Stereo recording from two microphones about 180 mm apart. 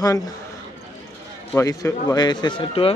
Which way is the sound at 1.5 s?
20° left (ahead or behind).